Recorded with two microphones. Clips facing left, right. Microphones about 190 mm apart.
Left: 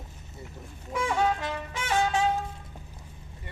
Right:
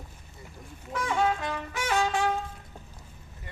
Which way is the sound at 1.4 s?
20° left (ahead or behind).